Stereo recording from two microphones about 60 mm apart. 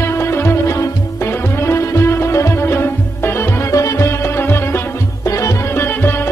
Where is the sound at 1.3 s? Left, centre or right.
Left.